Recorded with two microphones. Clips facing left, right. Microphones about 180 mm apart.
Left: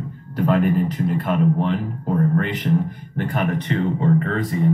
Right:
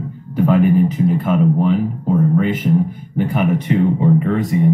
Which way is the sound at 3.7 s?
10° right (ahead or behind).